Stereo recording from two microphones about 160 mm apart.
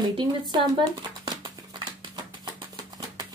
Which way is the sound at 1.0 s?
30° right (ahead or behind).